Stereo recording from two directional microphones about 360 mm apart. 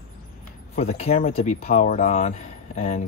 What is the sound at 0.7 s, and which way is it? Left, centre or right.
Speech, centre.